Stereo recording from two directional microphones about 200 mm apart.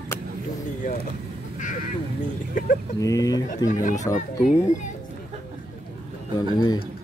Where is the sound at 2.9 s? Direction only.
15° left (ahead or behind).